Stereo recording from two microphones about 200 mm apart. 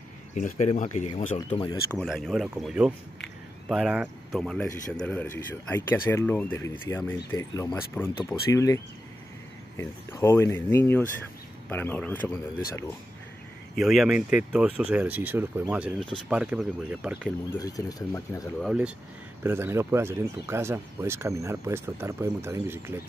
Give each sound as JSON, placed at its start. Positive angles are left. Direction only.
{"t": 0.3, "sound": "speech", "side_deg": 35}
{"t": 2.0, "sound": "speech", "side_deg": 0}
{"t": 13.7, "sound": "speech", "side_deg": 0}
{"t": 17.5, "sound": "speech", "side_deg": 20}
{"t": 18.6, "sound": "speech", "side_deg": -5}